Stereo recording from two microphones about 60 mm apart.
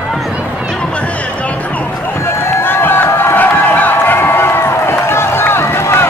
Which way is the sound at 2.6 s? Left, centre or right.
Left.